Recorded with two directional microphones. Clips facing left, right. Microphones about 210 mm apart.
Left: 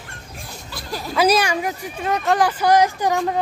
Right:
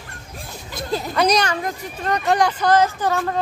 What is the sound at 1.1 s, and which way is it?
Speech, 5° left (ahead or behind).